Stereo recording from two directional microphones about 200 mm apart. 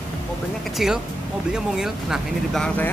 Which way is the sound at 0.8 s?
Centre (ahead or behind).